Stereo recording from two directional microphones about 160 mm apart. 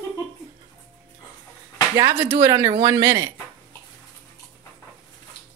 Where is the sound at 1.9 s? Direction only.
20° right (ahead or behind).